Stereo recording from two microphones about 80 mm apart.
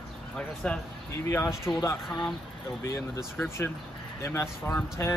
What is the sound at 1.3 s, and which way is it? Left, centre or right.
Speech, left.